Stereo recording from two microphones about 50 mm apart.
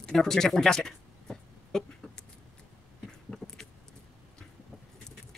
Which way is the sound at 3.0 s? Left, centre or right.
Centre.